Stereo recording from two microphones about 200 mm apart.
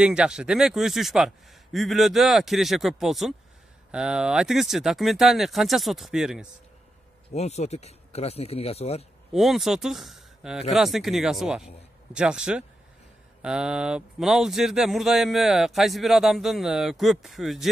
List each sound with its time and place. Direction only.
0.0 s speech: 5° right (ahead or behind)
7.3 s speech: 35° left (ahead or behind)
9.3 s speech: centre (ahead or behind)